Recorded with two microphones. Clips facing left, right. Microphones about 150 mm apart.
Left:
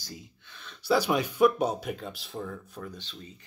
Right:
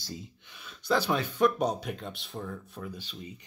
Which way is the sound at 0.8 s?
10° left (ahead or behind).